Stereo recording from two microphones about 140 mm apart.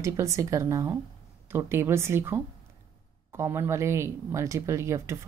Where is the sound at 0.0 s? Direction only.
20° right (ahead or behind).